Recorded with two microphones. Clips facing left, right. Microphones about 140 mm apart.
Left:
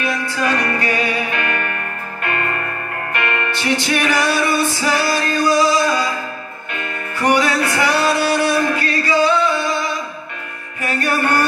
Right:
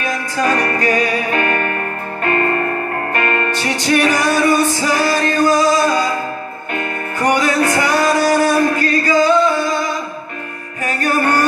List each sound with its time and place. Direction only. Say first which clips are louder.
0.0 s music: right 2 dB; 40° right (ahead or behind)
6.7 s music: right 5 dB; 40° right (ahead or behind)
10.8 s music: right 2 dB; 40° right (ahead or behind)